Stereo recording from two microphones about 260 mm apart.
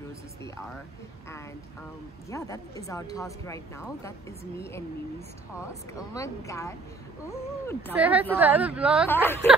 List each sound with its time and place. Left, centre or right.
2.3 s speech: centre
5.9 s speech: centre
7.9 s a woman's voice: centre
9.1 s speech: centre